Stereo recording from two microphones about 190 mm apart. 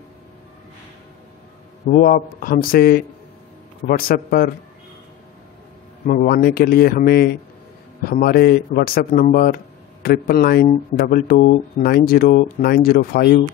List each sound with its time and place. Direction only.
1.9 s speech: 45° left (ahead or behind)
6.0 s speech: 50° left (ahead or behind)